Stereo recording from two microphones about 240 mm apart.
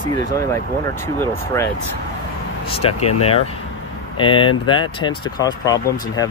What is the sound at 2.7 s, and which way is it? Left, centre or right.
Speech, left.